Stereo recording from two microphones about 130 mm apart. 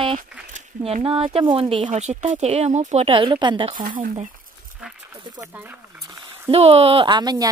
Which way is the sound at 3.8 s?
90° right.